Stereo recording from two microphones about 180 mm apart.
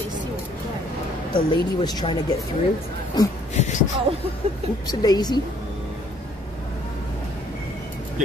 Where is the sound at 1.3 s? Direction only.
25° left (ahead or behind).